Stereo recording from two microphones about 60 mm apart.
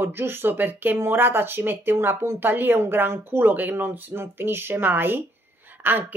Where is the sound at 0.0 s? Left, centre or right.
Right.